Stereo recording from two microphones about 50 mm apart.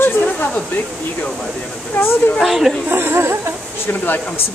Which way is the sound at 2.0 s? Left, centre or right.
Left.